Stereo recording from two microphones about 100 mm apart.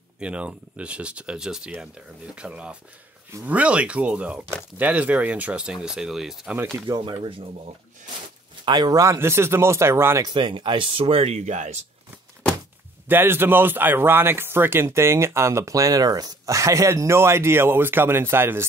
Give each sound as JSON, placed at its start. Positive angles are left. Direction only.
{"t": 0.2, "sound": "speech", "side_deg": -10}
{"t": 7.2, "sound": "speech", "side_deg": -60}
{"t": 8.6, "sound": "speech", "side_deg": -45}
{"t": 9.0, "sound": "speech", "side_deg": -30}
{"t": 10.2, "sound": "speech", "side_deg": -50}
{"t": 13.1, "sound": "speech", "side_deg": -20}